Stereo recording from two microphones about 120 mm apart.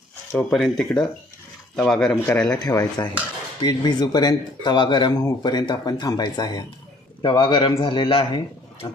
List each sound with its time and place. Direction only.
0.3 s speech: 5° left (ahead or behind)
2.6 s a man's voice: 30° left (ahead or behind)